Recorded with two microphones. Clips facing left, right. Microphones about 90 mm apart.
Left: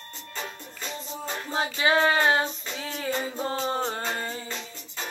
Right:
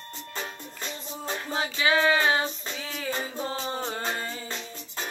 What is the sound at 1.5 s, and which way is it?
Child singing, 35° left (ahead or behind).